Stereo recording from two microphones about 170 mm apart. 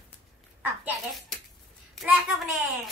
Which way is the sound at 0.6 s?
Centre (ahead or behind).